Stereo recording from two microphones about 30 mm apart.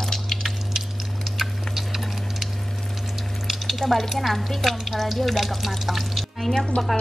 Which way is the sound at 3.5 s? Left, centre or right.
Centre.